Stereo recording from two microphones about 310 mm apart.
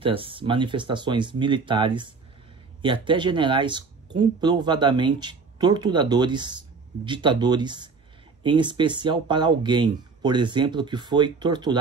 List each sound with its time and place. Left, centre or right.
0.0 s speech: centre